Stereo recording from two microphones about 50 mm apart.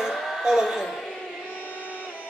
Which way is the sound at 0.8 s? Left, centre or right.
Centre.